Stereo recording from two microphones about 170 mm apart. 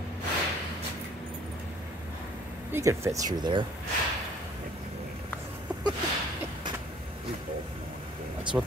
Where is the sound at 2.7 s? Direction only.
15° right (ahead or behind).